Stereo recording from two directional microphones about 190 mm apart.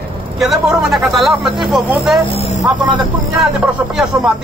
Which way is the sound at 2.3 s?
35° left (ahead or behind).